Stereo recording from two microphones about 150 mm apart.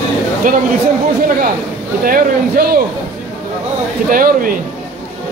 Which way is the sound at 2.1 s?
75° right (ahead or behind).